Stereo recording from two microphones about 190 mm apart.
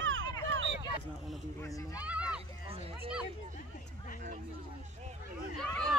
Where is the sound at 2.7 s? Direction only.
30° right (ahead or behind).